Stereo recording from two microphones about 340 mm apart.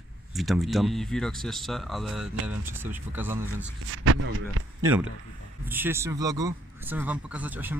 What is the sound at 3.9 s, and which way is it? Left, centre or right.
Speech, right.